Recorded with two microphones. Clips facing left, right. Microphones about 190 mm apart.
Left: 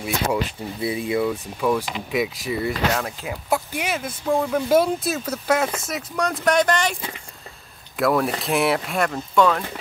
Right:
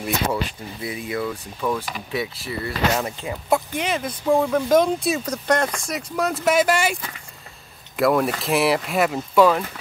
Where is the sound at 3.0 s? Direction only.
Centre (ahead or behind).